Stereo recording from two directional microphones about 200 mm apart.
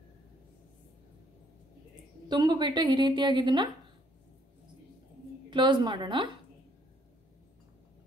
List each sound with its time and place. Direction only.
2.2 s a woman's voice: 20° right (ahead or behind)
5.5 s a woman's voice: 20° right (ahead or behind)